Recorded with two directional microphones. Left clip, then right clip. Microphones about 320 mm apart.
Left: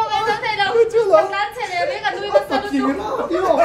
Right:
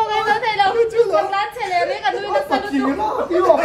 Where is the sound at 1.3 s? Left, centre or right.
Right.